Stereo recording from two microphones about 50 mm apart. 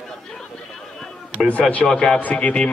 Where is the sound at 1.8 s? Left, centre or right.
Centre.